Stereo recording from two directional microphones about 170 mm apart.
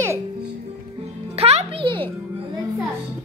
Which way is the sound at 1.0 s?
35° right (ahead or behind).